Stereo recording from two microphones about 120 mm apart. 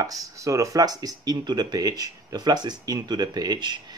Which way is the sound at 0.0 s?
30° right (ahead or behind).